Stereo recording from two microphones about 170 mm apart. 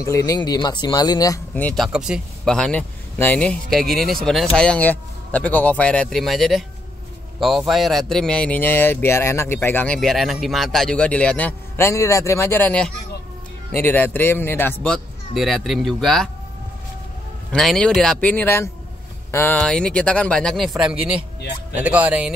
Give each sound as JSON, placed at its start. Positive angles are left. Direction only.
{"t": 0.0, "sound": "speech", "side_deg": 20}
{"t": 1.5, "sound": "a man's voice", "side_deg": 10}
{"t": 1.9, "sound": "a man's voice", "side_deg": -5}
{"t": 9.9, "sound": "a man's voice", "side_deg": 0}
{"t": 17.5, "sound": "speech", "side_deg": 0}